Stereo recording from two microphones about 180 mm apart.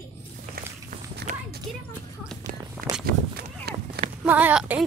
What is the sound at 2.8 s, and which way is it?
Speech, 55° right (ahead or behind).